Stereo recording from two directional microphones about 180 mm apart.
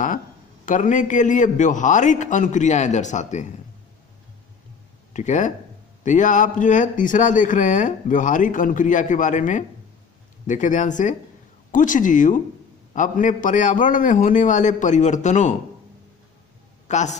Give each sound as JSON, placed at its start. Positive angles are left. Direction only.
{"t": 0.7, "sound": "a man's voice", "side_deg": 45}
{"t": 5.1, "sound": "a man's voice", "side_deg": 45}
{"t": 16.8, "sound": "a man's voice", "side_deg": 40}